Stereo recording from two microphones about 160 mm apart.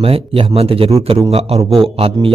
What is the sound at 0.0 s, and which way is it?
A man's voice, 35° right (ahead or behind).